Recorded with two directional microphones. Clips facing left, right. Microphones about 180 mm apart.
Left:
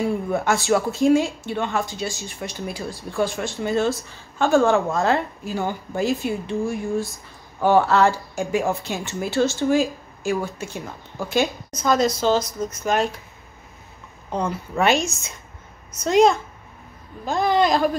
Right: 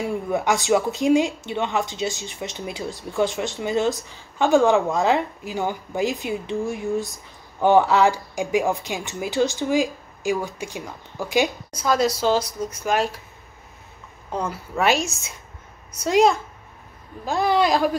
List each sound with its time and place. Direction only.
0.0 s speech: 15° right (ahead or behind)
7.6 s speech: 15° right (ahead or behind)
14.3 s a woman's voice: 5° right (ahead or behind)